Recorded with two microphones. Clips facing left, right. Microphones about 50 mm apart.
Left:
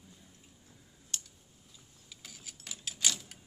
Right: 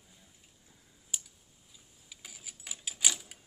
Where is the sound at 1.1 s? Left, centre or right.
Centre.